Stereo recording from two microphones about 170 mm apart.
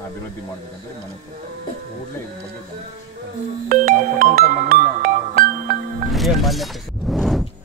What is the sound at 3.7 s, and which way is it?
Music, 55° right (ahead or behind).